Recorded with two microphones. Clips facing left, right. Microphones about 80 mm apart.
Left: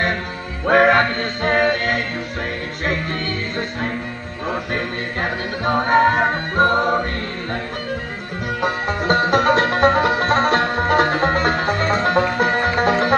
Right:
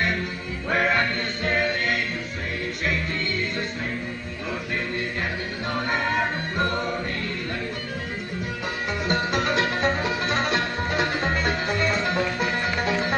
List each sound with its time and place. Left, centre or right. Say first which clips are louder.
0.7 s music: left 9 dB; left
5.7 s music: left 11 dB; left
8.6 s music: left 8 dB; left